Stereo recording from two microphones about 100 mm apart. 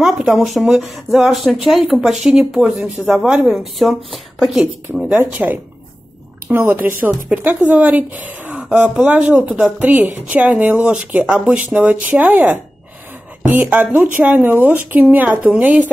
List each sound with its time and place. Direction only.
0.0 s a woman's voice: 5° right (ahead or behind)